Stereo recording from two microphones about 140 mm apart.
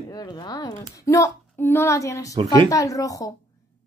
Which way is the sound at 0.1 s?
30° left (ahead or behind).